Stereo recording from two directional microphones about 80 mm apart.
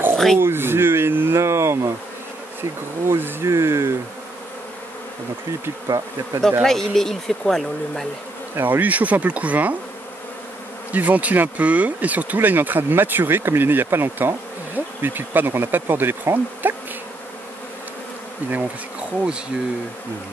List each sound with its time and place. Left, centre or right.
0.4 s speech: right
3.1 s speech: right
5.9 s bee: right
6.6 s speech: centre
8.5 s speech: right
10.9 s speech: centre
18.5 s bee: centre